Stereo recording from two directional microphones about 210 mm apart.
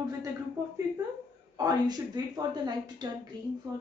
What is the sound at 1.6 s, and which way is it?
A woman's voice, 20° right (ahead or behind).